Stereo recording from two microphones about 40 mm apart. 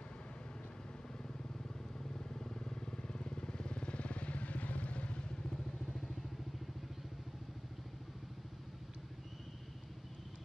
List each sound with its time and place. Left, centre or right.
2.1 s vehicle: centre